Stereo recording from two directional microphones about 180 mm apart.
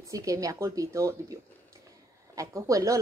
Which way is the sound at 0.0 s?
15° right (ahead or behind).